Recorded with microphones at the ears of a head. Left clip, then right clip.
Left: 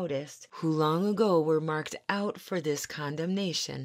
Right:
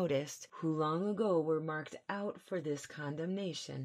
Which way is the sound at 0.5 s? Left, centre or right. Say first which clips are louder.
Left 7 dB; left.